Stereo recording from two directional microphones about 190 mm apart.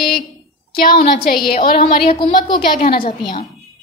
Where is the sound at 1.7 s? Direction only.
55° left (ahead or behind).